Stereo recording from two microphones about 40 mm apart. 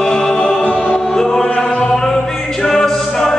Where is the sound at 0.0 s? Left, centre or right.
Left.